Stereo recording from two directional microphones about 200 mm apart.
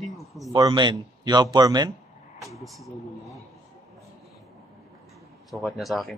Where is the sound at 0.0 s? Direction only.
Centre (ahead or behind).